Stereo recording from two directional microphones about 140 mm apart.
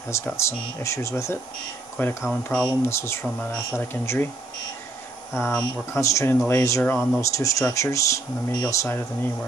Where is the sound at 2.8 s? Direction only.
20° left (ahead or behind).